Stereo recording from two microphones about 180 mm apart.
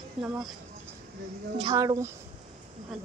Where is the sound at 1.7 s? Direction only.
20° right (ahead or behind).